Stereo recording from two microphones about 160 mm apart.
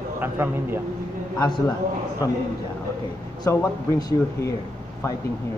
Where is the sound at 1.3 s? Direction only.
25° left (ahead or behind).